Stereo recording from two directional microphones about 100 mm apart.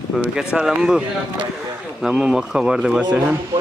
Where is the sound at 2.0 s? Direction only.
5° right (ahead or behind).